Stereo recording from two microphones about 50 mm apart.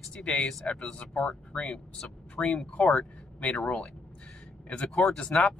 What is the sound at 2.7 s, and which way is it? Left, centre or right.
Speech, left.